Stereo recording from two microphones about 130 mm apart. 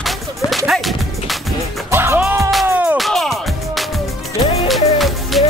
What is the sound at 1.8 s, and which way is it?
Music, 20° right (ahead or behind).